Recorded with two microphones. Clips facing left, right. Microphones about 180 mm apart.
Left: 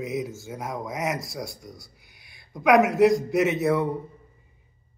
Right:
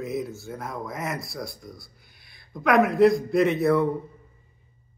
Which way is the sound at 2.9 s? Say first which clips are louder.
Right 1 dB; 90° left.